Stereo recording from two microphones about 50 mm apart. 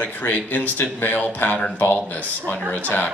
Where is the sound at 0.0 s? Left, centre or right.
Left.